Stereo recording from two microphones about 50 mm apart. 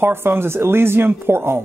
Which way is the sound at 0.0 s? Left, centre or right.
Right.